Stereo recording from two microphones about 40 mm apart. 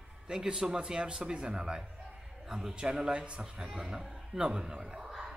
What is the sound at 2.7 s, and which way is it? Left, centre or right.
Speech, right.